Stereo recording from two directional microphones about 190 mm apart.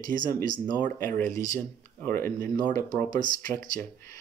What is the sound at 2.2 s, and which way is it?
Speech, 15° left (ahead or behind).